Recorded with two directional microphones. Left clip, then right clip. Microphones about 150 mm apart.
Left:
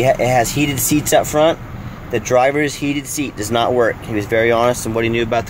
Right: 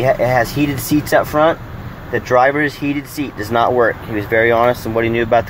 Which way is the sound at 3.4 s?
30° left (ahead or behind).